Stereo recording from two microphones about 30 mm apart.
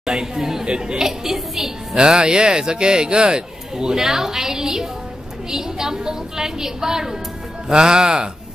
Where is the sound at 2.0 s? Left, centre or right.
Right.